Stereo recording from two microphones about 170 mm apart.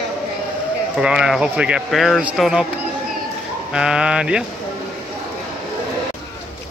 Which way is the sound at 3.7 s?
5° right (ahead or behind).